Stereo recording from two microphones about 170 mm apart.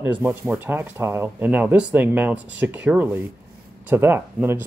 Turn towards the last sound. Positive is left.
turn(degrees=-10)  # may be behind; listen again after turning